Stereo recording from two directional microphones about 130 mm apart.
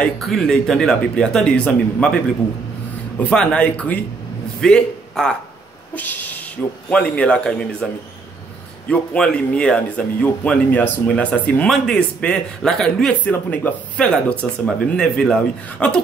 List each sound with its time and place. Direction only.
0.0 s speech: centre (ahead or behind)
3.2 s a man's voice: 10° left (ahead or behind)
5.9 s a sound: 15° left (ahead or behind)
6.9 s speech: 10° left (ahead or behind)